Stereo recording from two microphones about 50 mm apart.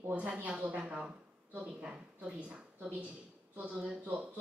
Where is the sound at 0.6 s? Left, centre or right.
Right.